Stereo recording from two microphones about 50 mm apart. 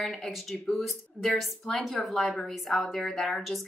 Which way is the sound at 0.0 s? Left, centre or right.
Centre.